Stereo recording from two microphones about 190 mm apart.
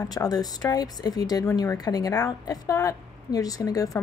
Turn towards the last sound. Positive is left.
turn(degrees=20)  # may be behind; listen again after turning